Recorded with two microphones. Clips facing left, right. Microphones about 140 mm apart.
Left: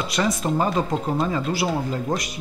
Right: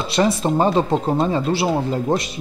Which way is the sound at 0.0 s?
30° right (ahead or behind).